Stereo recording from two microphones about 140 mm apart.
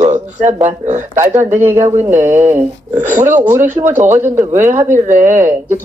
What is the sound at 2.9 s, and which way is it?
Speech, 60° right (ahead or behind).